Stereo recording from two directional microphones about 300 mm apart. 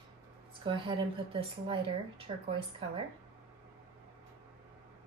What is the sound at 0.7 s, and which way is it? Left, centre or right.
A woman's voice, centre.